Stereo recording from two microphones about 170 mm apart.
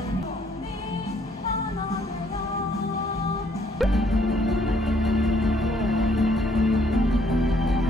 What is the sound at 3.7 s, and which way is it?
Music, centre (ahead or behind).